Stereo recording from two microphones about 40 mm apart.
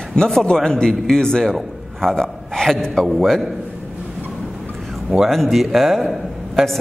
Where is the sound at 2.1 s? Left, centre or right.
Centre.